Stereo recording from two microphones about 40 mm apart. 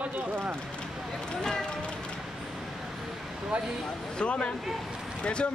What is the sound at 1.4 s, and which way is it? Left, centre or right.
Run, centre.